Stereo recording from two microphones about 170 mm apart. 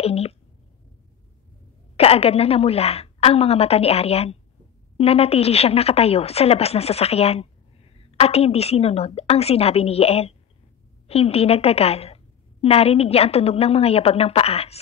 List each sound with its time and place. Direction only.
0.0 s a woman's voice: 35° left (ahead or behind)
2.0 s a woman's voice: 35° left (ahead or behind)